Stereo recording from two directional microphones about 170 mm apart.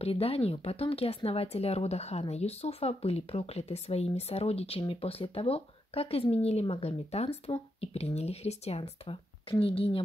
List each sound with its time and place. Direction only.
0.0 s speech: 35° left (ahead or behind)